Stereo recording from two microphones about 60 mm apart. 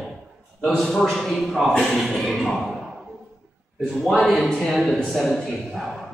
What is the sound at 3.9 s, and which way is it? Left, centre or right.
A man's voice, centre.